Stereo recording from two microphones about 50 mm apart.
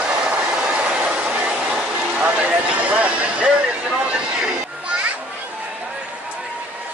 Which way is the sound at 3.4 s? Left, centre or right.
Centre.